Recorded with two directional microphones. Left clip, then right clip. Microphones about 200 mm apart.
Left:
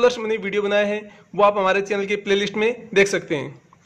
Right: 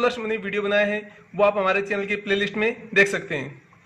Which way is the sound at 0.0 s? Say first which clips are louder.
Left 5 dB; 35° left (ahead or behind).